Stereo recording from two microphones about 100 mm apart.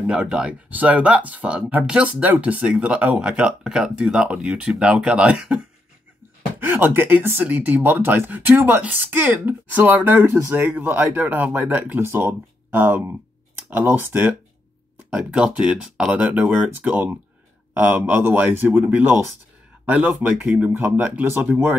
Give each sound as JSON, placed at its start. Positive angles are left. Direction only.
{"t": 0.0, "sound": "speech", "side_deg": -10}
{"t": 6.6, "sound": "speech", "side_deg": -20}
{"t": 15.0, "sound": "speech", "side_deg": -10}